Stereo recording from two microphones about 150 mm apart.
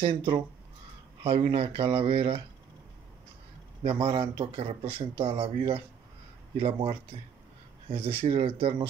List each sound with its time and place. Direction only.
0.0 s a man's voice: 35° right (ahead or behind)
3.8 s a man's voice: 40° right (ahead or behind)